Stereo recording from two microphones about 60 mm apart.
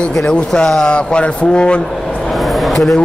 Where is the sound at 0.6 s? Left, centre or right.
Centre.